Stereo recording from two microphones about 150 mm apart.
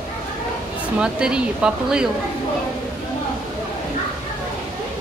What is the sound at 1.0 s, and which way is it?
Speech, 5° right (ahead or behind).